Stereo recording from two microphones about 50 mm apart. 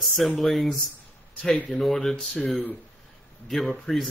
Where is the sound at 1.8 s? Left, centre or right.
Centre.